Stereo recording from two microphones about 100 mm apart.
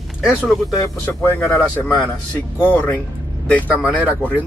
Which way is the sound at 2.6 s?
20° left (ahead or behind).